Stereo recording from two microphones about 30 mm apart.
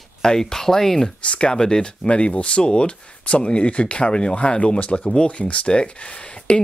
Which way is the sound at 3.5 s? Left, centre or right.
Left.